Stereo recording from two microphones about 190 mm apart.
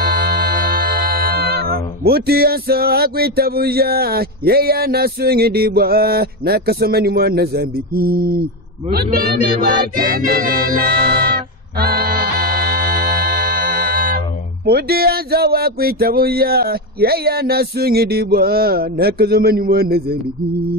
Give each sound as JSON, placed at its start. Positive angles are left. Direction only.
{"t": 0.0, "sound": "music", "side_deg": -50}
{"t": 14.7, "sound": "speech", "side_deg": -55}